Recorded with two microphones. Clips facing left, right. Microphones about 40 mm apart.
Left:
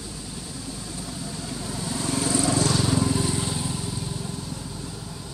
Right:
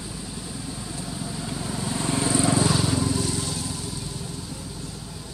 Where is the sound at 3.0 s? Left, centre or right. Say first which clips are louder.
Left 1 dB; left.